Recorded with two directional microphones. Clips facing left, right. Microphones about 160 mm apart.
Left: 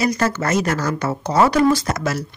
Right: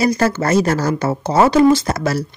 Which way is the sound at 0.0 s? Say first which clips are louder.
Right 4 dB; 30° right (ahead or behind).